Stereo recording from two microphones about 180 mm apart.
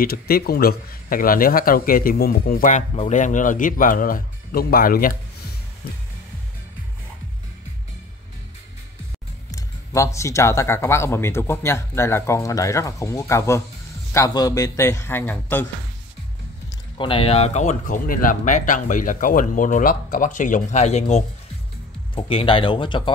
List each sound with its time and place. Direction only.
0.0 s speech: 60° left (ahead or behind)
9.5 s speech: 15° left (ahead or behind)
16.9 s speech: 30° left (ahead or behind)